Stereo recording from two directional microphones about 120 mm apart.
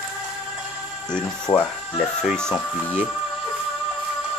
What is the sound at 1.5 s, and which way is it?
Speech, 25° left (ahead or behind).